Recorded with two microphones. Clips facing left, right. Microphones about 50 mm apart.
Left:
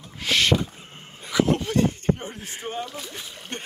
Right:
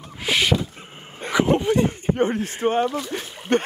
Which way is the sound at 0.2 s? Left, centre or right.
Centre.